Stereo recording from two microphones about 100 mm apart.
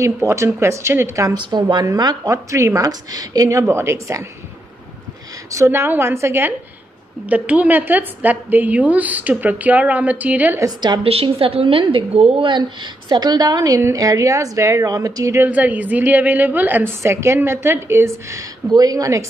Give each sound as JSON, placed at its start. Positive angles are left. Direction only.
{"t": 0.0, "sound": "a woman's voice", "side_deg": -30}
{"t": 1.3, "sound": "a woman's voice", "side_deg": -50}
{"t": 5.5, "sound": "a woman's voice", "side_deg": -30}
{"t": 7.2, "sound": "a woman's voice", "side_deg": -15}
{"t": 11.1, "sound": "a woman's voice", "side_deg": -75}
{"t": 12.4, "sound": "a woman's voice", "side_deg": -50}
{"t": 15.4, "sound": "a woman's voice", "side_deg": -15}